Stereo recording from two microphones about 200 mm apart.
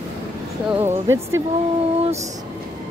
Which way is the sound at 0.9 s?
15° right (ahead or behind).